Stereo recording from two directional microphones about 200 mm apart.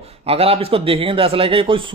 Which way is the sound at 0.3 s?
30° right (ahead or behind).